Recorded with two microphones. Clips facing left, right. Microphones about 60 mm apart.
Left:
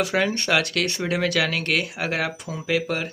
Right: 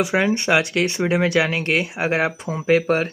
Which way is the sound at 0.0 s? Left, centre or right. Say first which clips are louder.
Right 3 dB; centre.